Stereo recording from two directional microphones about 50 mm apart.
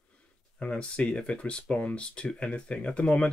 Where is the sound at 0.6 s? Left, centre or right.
Left.